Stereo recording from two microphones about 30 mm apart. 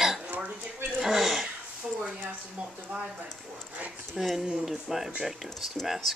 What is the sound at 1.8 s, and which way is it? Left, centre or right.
Speech, centre.